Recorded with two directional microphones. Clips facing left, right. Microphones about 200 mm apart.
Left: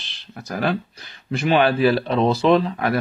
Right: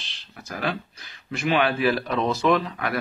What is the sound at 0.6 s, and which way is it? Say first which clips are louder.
Speech: left 6 dB; 35° left (ahead or behind).